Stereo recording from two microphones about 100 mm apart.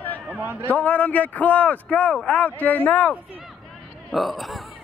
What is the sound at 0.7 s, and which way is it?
A man's voice, 15° left (ahead or behind).